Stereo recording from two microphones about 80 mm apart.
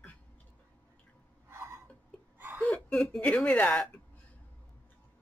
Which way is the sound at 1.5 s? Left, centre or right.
Right.